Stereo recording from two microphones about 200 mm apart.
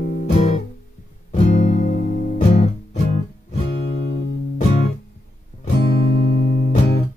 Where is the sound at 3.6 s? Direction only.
60° left (ahead or behind).